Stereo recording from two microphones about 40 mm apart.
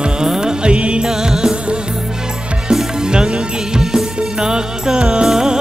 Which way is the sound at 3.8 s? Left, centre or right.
Centre.